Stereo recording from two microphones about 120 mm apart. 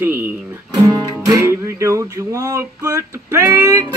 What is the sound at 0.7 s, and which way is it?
Music, 30° right (ahead or behind).